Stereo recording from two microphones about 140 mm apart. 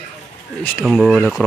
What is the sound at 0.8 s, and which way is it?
Speech, centre (ahead or behind).